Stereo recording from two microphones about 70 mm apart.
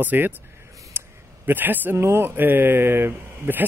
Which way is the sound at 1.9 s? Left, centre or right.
Right.